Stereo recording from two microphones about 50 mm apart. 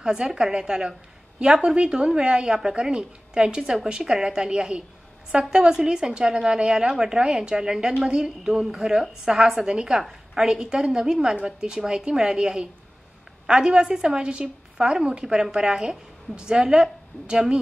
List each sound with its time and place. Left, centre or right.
0.0 s a woman's voice: centre